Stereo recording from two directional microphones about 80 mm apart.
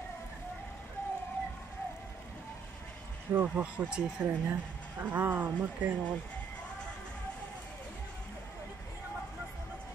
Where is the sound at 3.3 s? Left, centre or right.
Right.